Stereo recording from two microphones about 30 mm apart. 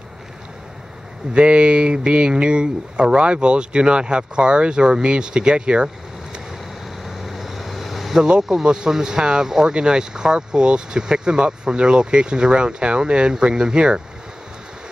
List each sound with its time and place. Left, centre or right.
1.3 s speech: right
7.1 s vehicle: centre
8.2 s speech: right
9.5 s speech: centre